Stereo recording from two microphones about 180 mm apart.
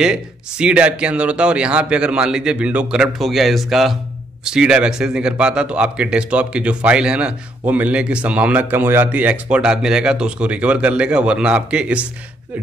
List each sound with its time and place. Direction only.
0.0 s speech: 5° right (ahead or behind)